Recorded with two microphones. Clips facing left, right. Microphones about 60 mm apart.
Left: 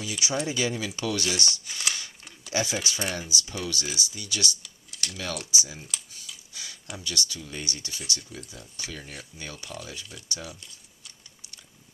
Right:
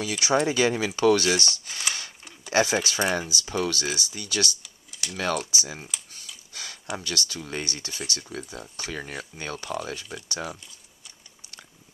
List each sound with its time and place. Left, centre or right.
0.0 s speech: right
2.5 s speech: right
4.6 s typing: centre
5.1 s speech: right